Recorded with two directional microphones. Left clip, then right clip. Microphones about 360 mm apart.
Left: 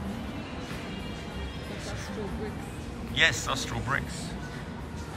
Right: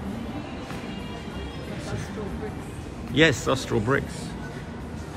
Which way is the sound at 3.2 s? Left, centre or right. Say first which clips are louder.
Right 4 dB; centre.